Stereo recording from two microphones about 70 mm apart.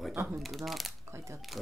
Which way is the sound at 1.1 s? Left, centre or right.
Right.